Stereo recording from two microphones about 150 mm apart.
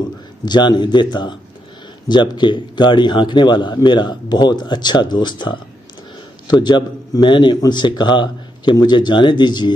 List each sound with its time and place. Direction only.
0.0 s a man's voice: 30° left (ahead or behind)